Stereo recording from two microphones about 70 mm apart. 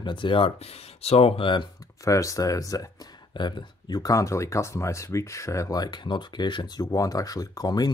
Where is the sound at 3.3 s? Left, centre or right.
Left.